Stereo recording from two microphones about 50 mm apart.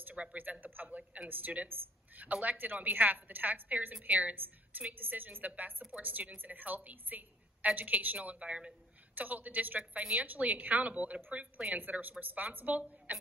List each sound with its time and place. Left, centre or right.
0.1 s a woman's voice: right
0.8 s a woman's voice: right
9.1 s a woman's voice: right